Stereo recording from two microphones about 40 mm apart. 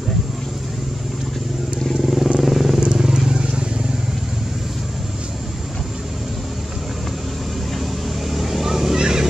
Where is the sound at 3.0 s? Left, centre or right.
Centre.